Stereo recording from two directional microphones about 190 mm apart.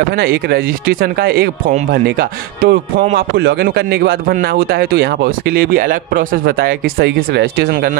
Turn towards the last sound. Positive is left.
turn(degrees=-55)  # may be behind; listen again after turning